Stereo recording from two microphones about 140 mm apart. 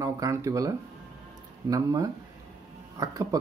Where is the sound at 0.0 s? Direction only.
20° right (ahead or behind).